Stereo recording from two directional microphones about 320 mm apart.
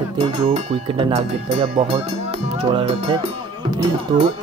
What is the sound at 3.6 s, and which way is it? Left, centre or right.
Speech, centre.